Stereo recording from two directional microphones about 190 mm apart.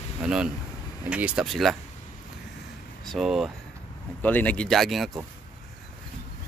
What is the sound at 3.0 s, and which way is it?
Speech, centre (ahead or behind).